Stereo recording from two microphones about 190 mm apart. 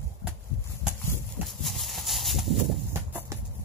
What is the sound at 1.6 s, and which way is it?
Horse, centre (ahead or behind).